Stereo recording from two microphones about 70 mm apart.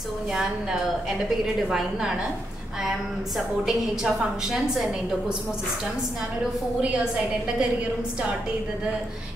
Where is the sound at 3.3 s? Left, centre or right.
Centre.